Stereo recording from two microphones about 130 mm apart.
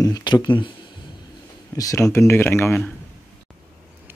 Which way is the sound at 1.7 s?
25° left (ahead or behind).